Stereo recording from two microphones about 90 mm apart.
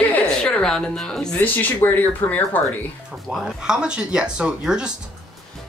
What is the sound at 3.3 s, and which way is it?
Speech, 10° right (ahead or behind).